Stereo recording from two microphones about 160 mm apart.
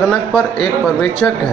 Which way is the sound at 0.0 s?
5° left (ahead or behind).